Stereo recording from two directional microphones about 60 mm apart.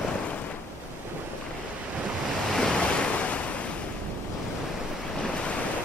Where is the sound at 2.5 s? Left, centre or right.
Centre.